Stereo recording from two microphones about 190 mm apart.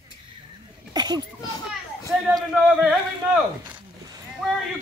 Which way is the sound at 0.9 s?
20° right (ahead or behind).